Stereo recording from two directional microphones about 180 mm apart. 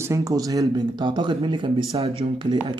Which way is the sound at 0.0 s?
15° right (ahead or behind).